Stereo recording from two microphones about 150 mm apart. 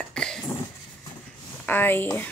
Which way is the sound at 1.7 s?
15° left (ahead or behind).